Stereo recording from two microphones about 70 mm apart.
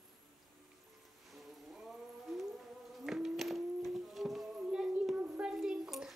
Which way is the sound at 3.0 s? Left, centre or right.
Centre.